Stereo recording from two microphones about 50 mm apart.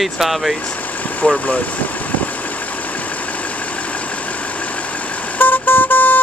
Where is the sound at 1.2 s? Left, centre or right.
Left.